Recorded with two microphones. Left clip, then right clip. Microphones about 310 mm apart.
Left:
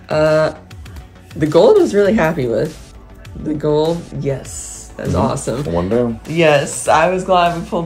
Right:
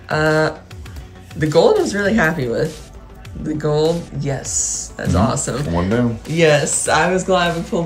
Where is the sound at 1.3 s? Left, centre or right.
Centre.